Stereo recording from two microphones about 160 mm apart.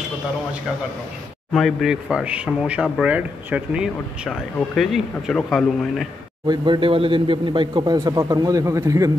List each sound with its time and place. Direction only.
1.5 s a man's voice: centre (ahead or behind)
6.4 s speech: 30° right (ahead or behind)